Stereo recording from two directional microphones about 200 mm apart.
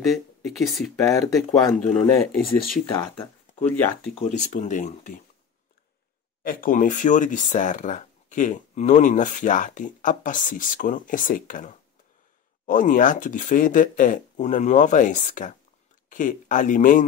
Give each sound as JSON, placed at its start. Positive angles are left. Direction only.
{"t": 0.4, "sound": "speech", "side_deg": 0}
{"t": 4.2, "sound": "speech", "side_deg": 35}
{"t": 6.4, "sound": "speech", "side_deg": 45}